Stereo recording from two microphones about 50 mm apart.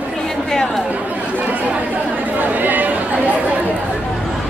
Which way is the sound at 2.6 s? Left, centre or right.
Right.